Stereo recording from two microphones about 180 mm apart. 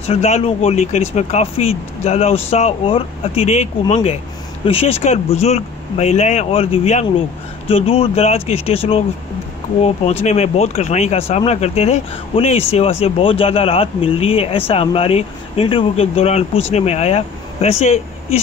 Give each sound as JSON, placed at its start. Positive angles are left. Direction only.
{"t": 0.0, "sound": "speech", "side_deg": 35}
{"t": 10.2, "sound": "speech", "side_deg": 35}